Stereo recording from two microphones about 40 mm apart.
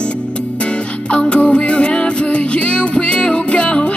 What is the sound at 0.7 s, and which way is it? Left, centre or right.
Music, left.